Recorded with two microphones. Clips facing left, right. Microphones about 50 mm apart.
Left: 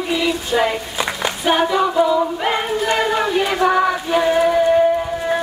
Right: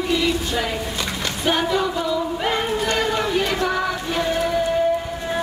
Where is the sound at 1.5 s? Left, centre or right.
Centre.